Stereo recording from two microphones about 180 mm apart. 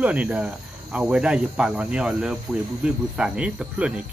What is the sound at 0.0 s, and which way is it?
Cricket, 10° right (ahead or behind).